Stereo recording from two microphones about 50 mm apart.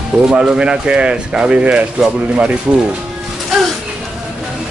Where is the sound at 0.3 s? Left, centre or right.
Centre.